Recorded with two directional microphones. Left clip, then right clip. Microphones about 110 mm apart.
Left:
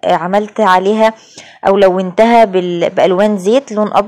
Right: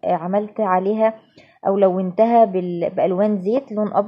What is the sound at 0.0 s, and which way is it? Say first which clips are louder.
Speech: left 8 dB; 30° left (ahead or behind).